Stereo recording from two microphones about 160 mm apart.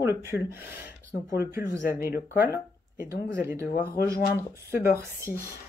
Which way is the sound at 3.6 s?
60° left (ahead or behind).